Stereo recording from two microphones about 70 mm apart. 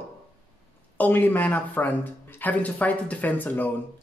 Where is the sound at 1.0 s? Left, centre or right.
Left.